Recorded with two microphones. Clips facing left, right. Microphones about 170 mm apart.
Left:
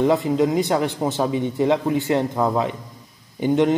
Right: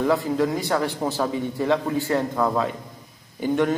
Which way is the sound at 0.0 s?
20° left (ahead or behind).